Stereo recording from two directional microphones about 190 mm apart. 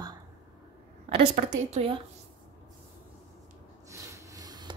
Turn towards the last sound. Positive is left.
turn(degrees=-20)  # may be behind; listen again after turning